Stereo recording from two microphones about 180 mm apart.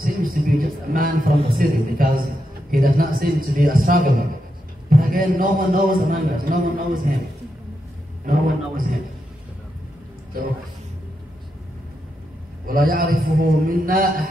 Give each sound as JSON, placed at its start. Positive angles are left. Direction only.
{"t": 0.0, "sound": "a man's voice", "side_deg": -50}
{"t": 8.3, "sound": "a man's voice", "side_deg": -50}
{"t": 12.6, "sound": "a man's voice", "side_deg": -50}